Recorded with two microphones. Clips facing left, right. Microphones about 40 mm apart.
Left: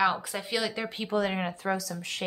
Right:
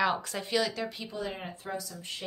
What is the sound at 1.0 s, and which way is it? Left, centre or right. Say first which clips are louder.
Speech: left 8 dB; left.